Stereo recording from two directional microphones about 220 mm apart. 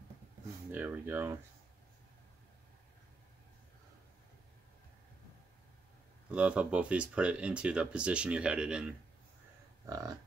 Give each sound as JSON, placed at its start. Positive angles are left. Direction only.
{"t": 0.7, "sound": "speech", "side_deg": -5}
{"t": 6.3, "sound": "speech", "side_deg": -5}
{"t": 9.8, "sound": "speech", "side_deg": -15}